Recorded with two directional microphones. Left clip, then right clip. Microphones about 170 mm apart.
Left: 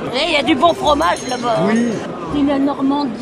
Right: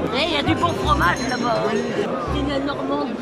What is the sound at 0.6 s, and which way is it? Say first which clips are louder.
Speech: left 6 dB; 30° left (ahead or behind).